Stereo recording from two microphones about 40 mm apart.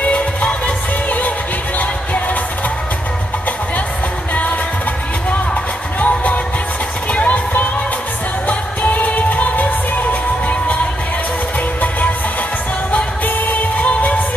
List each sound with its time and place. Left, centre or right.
0.0 s music: left
5.9 s music: left
8.8 s music: left
12.9 s music: left